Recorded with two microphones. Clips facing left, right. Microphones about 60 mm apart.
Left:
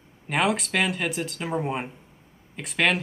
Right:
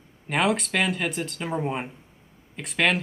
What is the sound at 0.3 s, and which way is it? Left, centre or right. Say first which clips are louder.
Speech: even; centre.